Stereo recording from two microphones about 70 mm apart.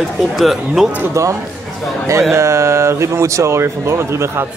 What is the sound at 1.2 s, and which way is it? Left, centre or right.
Speech, right.